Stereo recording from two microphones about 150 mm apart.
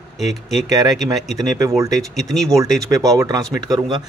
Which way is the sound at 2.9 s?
20° right (ahead or behind).